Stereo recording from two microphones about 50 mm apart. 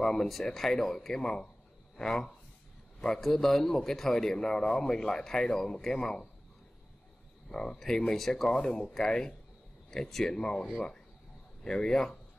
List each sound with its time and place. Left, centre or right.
0.0 s a man's voice: centre
7.4 s a man's voice: centre